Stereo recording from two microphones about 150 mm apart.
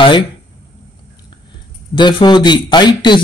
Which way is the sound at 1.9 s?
30° left (ahead or behind).